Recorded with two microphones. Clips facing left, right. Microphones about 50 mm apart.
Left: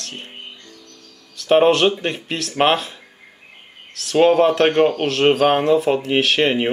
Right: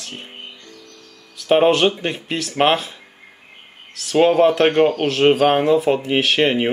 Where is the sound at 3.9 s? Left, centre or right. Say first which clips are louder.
Even; centre.